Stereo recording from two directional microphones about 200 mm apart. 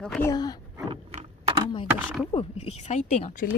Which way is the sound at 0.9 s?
30° right (ahead or behind).